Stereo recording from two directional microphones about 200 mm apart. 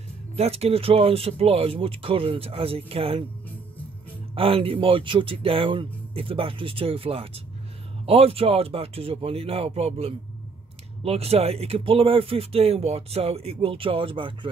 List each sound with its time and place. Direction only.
0.4 s speech: 30° right (ahead or behind)
4.4 s speech: 25° right (ahead or behind)